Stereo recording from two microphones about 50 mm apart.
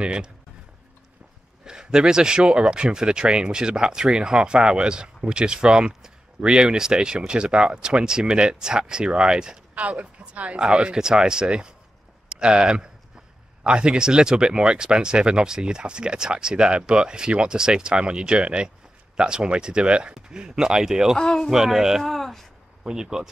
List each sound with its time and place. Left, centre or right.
0.0 s speech: centre
1.6 s speech: centre
9.8 s speech: right; by 21.2 s centre
21.2 s speech: centre
21.5 s speech: centre
22.0 s speech: centre
22.8 s speech: centre